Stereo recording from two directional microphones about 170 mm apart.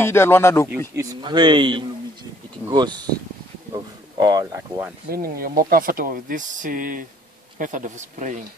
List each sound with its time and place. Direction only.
0.0 s speech: 15° left (ahead or behind)
1.2 s speech: 25° right (ahead or behind)
4.2 s speech: 25° right (ahead or behind)
4.6 s speech: 15° right (ahead or behind)
5.1 s speech: 60° right (ahead or behind)